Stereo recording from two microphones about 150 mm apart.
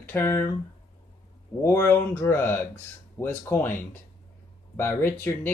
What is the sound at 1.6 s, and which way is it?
Speech, 15° left (ahead or behind).